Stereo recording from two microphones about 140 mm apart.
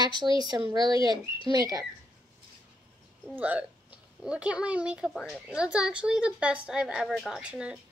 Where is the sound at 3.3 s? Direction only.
10° right (ahead or behind).